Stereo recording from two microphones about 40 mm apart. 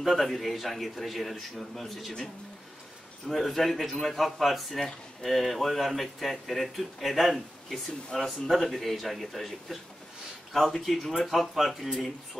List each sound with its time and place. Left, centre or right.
0.0 s speech: centre
3.3 s speech: centre